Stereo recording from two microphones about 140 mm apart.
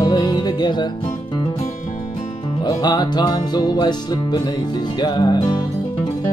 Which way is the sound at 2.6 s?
30° left (ahead or behind).